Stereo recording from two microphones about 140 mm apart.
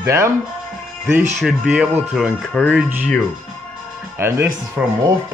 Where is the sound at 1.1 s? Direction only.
5° right (ahead or behind).